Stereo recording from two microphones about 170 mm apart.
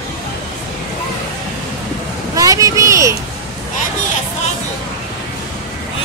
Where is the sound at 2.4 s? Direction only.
20° right (ahead or behind).